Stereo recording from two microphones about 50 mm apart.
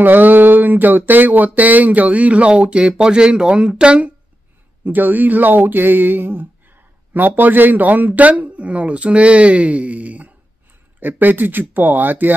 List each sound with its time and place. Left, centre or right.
0.0 s speech: right
4.8 s speech: right